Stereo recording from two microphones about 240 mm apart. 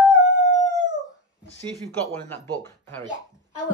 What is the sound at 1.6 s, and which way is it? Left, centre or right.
Speech, centre.